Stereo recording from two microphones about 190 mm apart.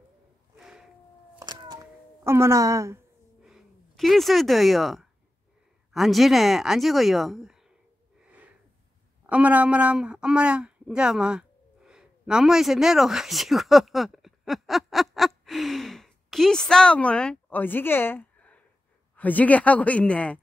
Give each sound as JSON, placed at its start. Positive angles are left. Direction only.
{"t": 0.6, "sound": "a sound", "side_deg": 0}
{"t": 1.7, "sound": "cat", "side_deg": -15}
{"t": 3.4, "sound": "speech", "side_deg": 0}
{"t": 9.2, "sound": "a woman's voice", "side_deg": -5}